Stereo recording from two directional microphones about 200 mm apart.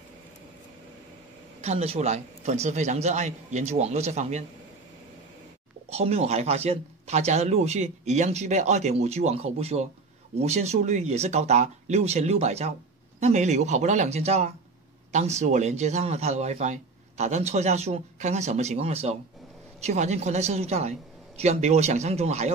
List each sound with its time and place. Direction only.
1.6 s speech: 30° right (ahead or behind)
5.9 s speech: 30° right (ahead or behind)